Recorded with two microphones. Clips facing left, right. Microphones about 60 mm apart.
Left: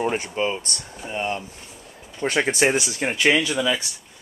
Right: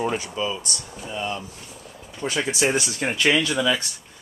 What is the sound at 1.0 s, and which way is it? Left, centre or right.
Speech, left.